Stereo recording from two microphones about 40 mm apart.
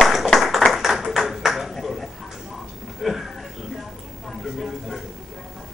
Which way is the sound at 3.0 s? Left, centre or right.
Centre.